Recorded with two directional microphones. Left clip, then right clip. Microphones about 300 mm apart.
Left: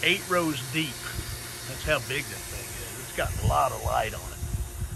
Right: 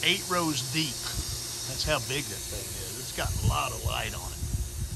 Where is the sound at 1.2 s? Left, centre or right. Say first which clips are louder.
Right 2 dB; centre.